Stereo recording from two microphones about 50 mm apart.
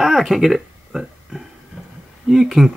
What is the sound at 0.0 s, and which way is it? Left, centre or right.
Speech, centre.